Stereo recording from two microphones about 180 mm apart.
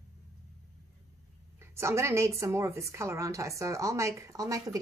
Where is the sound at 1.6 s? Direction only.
15° right (ahead or behind).